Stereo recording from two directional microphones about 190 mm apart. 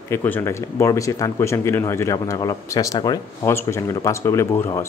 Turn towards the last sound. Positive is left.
turn(degrees=15)  # may be behind; listen again after turning